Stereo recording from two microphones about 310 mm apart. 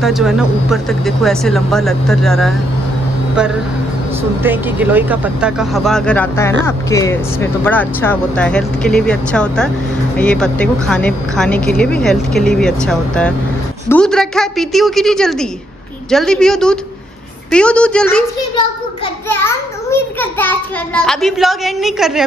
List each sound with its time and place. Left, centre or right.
0.0 s a woman's voice: centre
4.4 s a woman's voice: centre
19.2 s a woman's voice: centre